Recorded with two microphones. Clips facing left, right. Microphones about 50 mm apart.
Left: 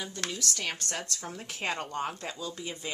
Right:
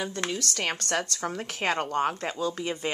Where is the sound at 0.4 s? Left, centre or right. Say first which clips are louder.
Right 4 dB; right.